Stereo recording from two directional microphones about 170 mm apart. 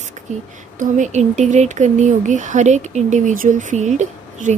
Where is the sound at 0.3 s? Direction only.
45° right (ahead or behind).